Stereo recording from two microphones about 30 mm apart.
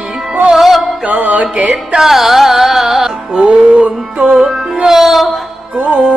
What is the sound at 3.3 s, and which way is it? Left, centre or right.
Music, right.